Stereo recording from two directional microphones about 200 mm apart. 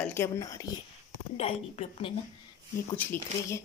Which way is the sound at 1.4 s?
30° left (ahead or behind).